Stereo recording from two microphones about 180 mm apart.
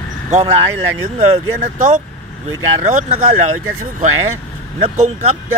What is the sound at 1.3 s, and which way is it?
Speech, 40° right (ahead or behind).